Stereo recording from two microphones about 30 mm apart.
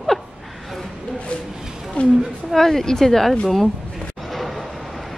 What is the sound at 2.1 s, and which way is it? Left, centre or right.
Speech, right.